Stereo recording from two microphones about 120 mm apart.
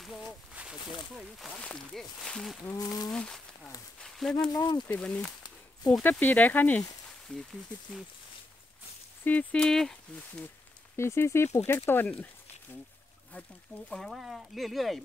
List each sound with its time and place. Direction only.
0.2 s a sound: 10° right (ahead or behind)
0.9 s speech: centre (ahead or behind)
2.8 s speech: 30° left (ahead or behind)
3.1 s speech: 5° left (ahead or behind)
4.5 s speech: 35° left (ahead or behind)
4.8 s speech: 10° left (ahead or behind)
9.2 s speech: 10° left (ahead or behind)
11.0 s speech: 20° left (ahead or behind)
13.8 s speech: centre (ahead or behind)